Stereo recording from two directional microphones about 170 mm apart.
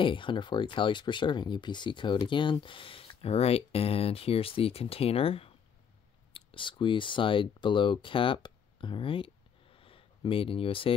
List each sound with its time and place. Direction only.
0.0 s speech: 30° left (ahead or behind)